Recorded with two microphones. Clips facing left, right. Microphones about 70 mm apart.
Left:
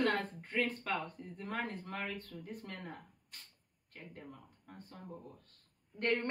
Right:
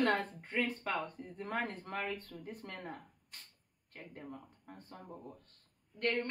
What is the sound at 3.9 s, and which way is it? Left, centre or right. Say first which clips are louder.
Speech: right 3 dB; right.